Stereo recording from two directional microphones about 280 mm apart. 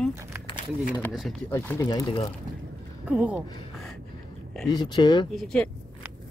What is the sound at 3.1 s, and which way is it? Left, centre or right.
Speech, centre.